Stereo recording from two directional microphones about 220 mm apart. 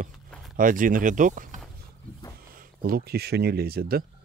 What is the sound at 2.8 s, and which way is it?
Speech, 45° right (ahead or behind).